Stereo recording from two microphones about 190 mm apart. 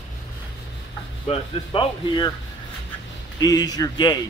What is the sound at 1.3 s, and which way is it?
Speech, 25° left (ahead or behind).